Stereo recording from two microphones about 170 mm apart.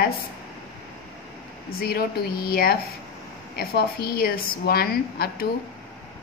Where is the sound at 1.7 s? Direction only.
65° left (ahead or behind).